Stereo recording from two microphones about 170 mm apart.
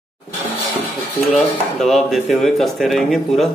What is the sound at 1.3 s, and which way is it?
A man's voice, centre (ahead or behind).